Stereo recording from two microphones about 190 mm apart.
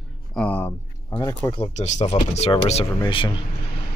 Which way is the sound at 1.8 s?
35° left (ahead or behind).